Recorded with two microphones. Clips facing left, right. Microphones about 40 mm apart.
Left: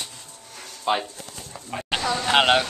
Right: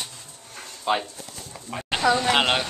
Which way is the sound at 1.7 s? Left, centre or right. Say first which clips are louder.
Right 4 dB; centre.